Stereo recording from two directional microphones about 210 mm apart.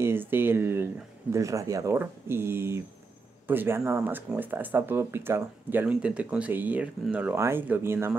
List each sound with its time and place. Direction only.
0.0 s speech: 10° right (ahead or behind)